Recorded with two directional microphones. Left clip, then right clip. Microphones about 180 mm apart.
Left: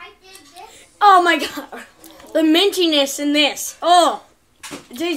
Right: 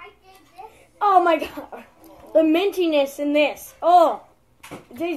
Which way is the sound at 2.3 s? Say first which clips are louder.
Left 3 dB; 25° left (ahead or behind).